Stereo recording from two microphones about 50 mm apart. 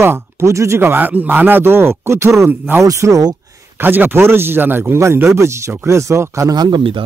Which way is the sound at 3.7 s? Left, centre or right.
Right.